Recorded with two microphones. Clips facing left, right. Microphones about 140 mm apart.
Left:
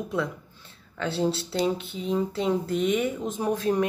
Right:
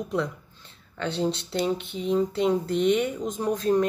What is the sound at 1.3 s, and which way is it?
Speech, 20° right (ahead or behind).